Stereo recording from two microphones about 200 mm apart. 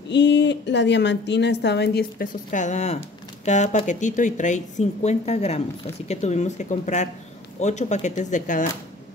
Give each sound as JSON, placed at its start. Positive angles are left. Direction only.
{"t": 0.1, "sound": "a woman's voice", "side_deg": 60}